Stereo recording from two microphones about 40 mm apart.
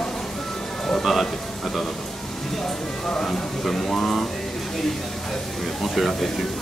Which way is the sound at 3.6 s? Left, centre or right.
Centre.